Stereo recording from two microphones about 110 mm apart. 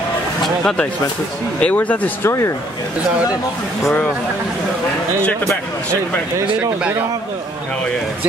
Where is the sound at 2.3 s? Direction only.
25° left (ahead or behind).